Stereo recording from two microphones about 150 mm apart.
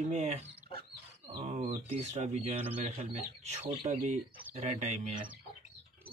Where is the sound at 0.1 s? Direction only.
45° right (ahead or behind).